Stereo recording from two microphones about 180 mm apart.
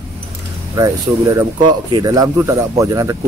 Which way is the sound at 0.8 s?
20° right (ahead or behind).